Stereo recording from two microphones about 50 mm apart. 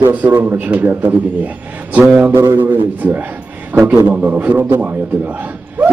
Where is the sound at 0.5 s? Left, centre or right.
Right.